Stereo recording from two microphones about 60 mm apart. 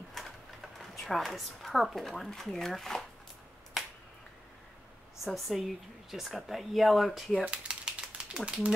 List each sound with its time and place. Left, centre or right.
0.1 s speech: centre
5.2 s a woman's voice: centre
7.4 s typewriter: centre